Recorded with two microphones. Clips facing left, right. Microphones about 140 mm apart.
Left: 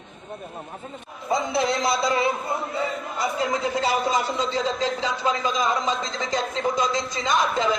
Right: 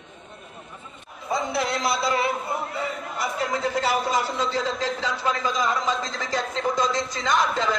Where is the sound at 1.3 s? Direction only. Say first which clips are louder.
Left 2 dB; 20° left (ahead or behind).